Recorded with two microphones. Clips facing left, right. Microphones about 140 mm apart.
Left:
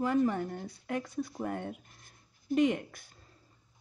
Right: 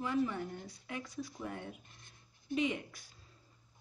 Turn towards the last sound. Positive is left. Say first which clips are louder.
# left 7 dB
turn(degrees=50)  # may be behind; listen again after turning